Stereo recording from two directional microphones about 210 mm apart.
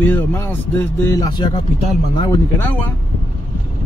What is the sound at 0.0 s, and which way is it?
Speech, 10° left (ahead or behind).